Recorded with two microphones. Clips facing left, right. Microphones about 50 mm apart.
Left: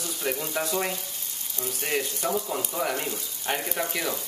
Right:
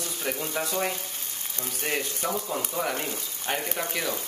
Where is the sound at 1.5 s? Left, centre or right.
Right.